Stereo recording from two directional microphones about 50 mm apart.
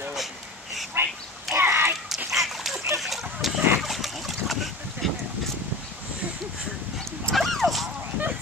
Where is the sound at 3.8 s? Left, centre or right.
Centre.